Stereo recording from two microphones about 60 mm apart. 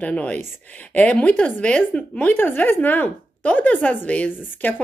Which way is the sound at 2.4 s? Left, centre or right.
Left.